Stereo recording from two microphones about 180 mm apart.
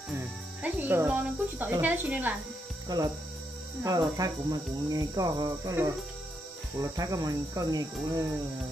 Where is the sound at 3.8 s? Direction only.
20° right (ahead or behind).